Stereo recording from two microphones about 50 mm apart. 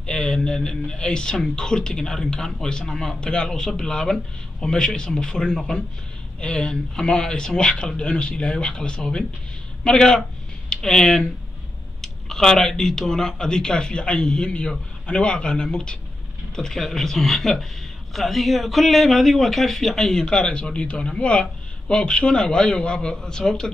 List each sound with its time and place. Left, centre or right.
0.0 s a man's voice: centre